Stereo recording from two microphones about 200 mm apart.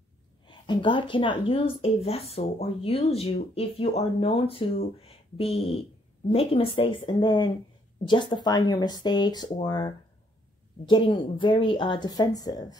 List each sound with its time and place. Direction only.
0.5 s speech: 25° left (ahead or behind)